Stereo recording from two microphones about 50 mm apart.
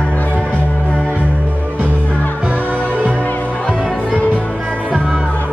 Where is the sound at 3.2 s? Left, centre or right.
Left; by 4.1 s centre.